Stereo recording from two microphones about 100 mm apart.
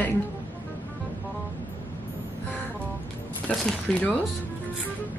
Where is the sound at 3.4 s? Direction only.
15° left (ahead or behind).